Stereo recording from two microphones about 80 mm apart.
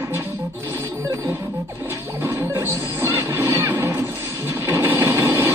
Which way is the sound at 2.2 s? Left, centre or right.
Right.